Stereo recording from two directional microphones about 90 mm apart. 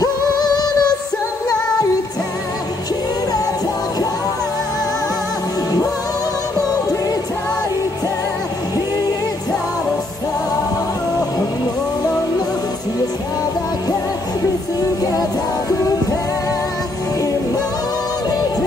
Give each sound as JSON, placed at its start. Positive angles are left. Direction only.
{"t": 0.0, "sound": "music", "side_deg": 50}